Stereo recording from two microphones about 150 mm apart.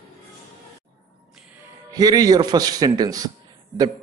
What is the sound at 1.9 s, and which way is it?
A man's voice, 25° right (ahead or behind).